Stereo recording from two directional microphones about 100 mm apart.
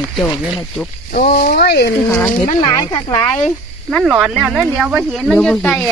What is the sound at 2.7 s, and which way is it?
Speech, 40° left (ahead or behind).